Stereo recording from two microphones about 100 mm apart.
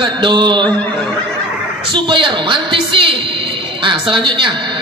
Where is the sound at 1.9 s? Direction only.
55° right (ahead or behind).